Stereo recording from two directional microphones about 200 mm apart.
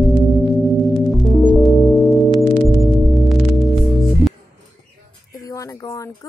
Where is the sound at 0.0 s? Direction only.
Centre (ahead or behind).